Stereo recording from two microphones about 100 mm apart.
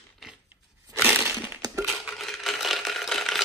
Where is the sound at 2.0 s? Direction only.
Centre (ahead or behind).